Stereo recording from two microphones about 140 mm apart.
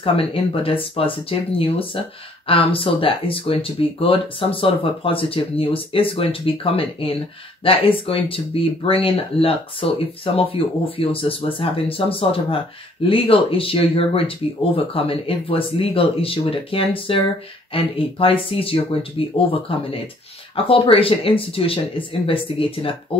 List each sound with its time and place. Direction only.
0.0 s speech: 40° left (ahead or behind)